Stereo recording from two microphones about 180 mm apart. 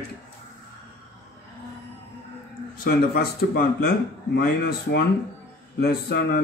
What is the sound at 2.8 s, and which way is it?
Speech, 60° left (ahead or behind).